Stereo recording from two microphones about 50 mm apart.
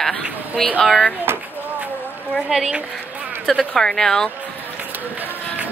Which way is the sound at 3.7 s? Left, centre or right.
Centre.